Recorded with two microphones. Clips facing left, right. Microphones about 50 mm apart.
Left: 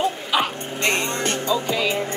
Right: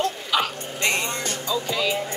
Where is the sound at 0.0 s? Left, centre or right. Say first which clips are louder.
Left 2 dB; centre.